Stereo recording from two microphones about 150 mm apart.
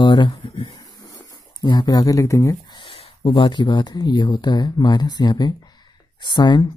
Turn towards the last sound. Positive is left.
turn(degrees=30)  # may be behind; listen again after turning